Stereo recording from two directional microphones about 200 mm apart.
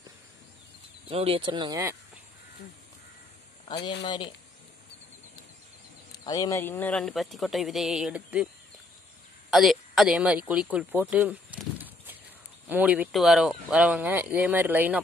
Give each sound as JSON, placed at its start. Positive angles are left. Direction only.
{"t": 1.0, "sound": "speech", "side_deg": -30}
{"t": 3.6, "sound": "speech", "side_deg": 20}
{"t": 6.2, "sound": "speech", "side_deg": 15}
{"t": 9.5, "sound": "speech", "side_deg": 0}